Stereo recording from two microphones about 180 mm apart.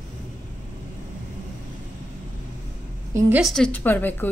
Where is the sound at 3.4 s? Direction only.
5° left (ahead or behind).